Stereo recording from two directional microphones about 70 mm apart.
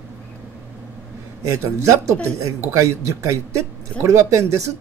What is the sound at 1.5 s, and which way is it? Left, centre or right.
Speech, right.